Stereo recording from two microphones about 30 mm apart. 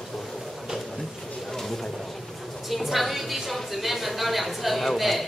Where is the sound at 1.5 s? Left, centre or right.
Centre.